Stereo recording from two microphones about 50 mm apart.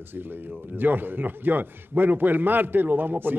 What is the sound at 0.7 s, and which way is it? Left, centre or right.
A man's voice, right.